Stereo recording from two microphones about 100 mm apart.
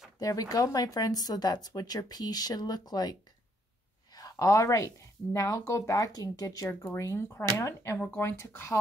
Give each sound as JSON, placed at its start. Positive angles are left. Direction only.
{"t": 0.2, "sound": "speech", "side_deg": 35}